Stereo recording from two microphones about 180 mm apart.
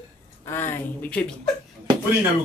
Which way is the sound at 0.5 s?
15° left (ahead or behind).